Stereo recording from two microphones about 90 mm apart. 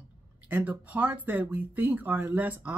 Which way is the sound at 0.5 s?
20° right (ahead or behind).